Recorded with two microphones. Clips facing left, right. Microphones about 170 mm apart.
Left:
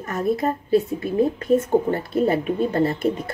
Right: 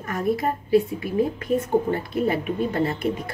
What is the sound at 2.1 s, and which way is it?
Speech, 30° left (ahead or behind).